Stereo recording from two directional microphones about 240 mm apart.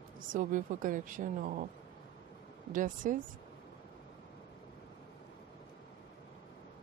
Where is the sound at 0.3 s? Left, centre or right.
Right.